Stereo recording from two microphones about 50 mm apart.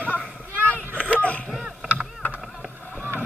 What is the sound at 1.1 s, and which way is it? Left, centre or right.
Vehicle, left.